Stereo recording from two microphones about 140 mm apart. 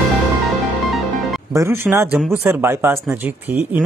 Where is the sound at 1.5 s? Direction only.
20° right (ahead or behind).